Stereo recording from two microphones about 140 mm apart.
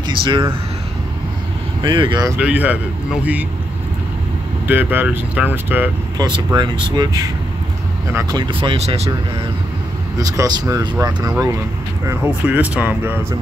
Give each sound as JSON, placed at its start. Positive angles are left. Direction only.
{"t": 0.2, "sound": "speech", "side_deg": -35}
{"t": 1.8, "sound": "speech", "side_deg": -35}
{"t": 2.3, "sound": "speech", "side_deg": -10}
{"t": 4.6, "sound": "speech", "side_deg": -15}
{"t": 6.1, "sound": "speech", "side_deg": -30}
{"t": 8.1, "sound": "speech", "side_deg": -20}
{"t": 8.4, "sound": "speech", "side_deg": -35}
{"t": 10.1, "sound": "speech", "side_deg": -25}
{"t": 12.1, "sound": "speech", "side_deg": -10}